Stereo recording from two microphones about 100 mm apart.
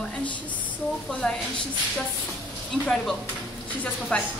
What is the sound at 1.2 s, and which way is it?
Speech, 10° left (ahead or behind).